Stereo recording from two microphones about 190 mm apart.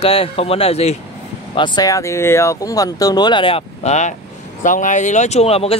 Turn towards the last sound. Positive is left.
turn(degrees=30)  # may be behind; listen again after turning